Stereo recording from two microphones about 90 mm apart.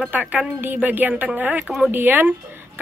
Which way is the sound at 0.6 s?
20° right (ahead or behind).